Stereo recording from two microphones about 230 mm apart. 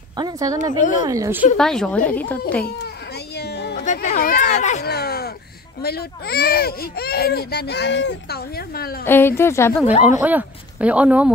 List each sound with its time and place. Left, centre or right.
0.1 s a sound: centre
1.0 s a woman's voice: centre
1.6 s speech: centre
3.3 s a sound: left
3.8 s speech: left
4.8 s a sound: left
5.8 s speech: left
9.0 s speech: centre
10.0 s speech: centre